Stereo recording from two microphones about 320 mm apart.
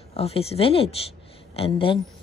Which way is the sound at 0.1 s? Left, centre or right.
Centre.